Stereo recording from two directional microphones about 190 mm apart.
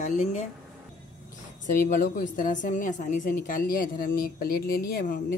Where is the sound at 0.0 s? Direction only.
40° left (ahead or behind).